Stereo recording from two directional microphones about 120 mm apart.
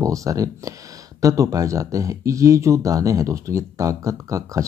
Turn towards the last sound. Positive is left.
turn(degrees=-25)  # may be behind; listen again after turning